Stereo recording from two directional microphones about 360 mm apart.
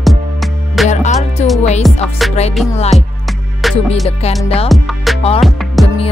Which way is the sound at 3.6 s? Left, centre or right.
Centre.